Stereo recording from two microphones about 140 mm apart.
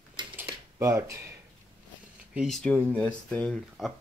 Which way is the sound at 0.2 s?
35° right (ahead or behind).